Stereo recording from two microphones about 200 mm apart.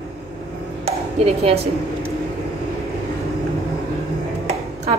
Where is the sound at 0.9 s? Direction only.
30° right (ahead or behind).